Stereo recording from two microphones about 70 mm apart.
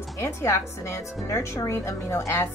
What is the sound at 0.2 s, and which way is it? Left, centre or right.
A woman's voice, left.